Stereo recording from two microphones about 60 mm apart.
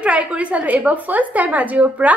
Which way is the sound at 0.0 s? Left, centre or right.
Centre.